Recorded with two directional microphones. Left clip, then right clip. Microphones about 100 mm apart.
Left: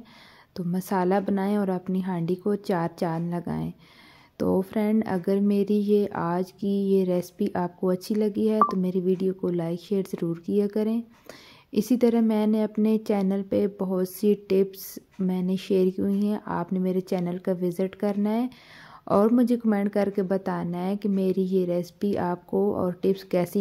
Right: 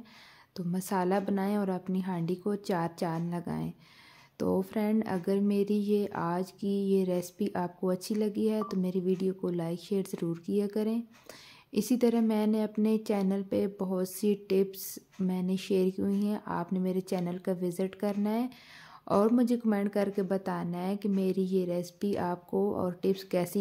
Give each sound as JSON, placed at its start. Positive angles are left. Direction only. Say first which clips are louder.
{"t": 0.6, "sound": "a woman's voice", "louder": "left 5 dB", "side_deg": 45}